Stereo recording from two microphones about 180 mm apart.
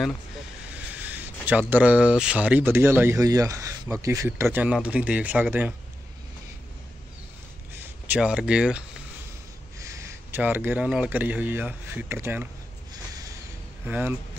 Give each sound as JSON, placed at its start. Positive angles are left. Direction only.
{"t": 0.7, "sound": "speech", "side_deg": -10}
{"t": 7.7, "sound": "speech", "side_deg": -10}
{"t": 9.8, "sound": "speech", "side_deg": -15}
{"t": 12.9, "sound": "a sound", "side_deg": -20}
{"t": 13.8, "sound": "speech", "side_deg": -10}